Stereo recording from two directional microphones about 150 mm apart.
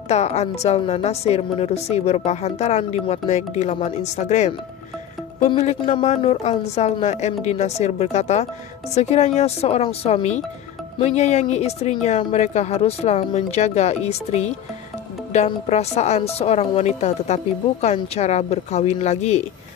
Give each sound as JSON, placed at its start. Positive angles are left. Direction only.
{"t": 0.1, "sound": "a woman's voice", "side_deg": 45}
{"t": 5.6, "sound": "a woman's voice", "side_deg": 50}